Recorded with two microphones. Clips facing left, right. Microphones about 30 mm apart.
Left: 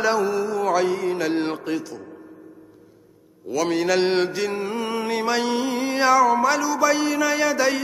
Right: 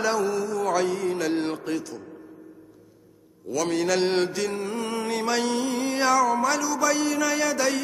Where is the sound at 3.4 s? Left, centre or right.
Centre.